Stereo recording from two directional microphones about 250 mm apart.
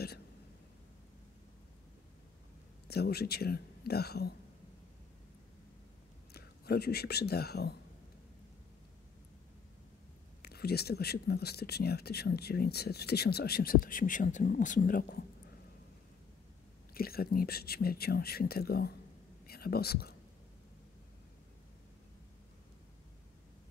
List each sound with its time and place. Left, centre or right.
2.9 s speech: left
6.3 s speech: left
10.4 s speech: left
16.9 s speech: left